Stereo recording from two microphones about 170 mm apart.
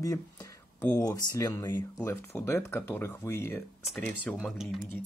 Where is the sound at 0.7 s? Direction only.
10° left (ahead or behind).